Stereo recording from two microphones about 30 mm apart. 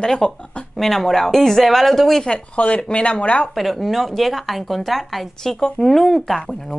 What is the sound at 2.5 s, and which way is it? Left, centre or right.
Speech, left.